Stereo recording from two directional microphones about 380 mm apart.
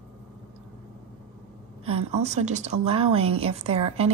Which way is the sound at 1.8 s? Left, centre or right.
Centre.